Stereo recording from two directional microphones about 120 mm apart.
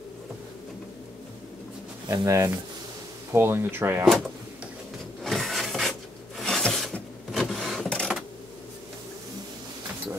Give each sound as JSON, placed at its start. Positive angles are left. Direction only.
{"t": 2.2, "sound": "speech", "side_deg": -25}
{"t": 4.0, "sound": "speech", "side_deg": 0}
{"t": 5.2, "sound": "a sound", "side_deg": 0}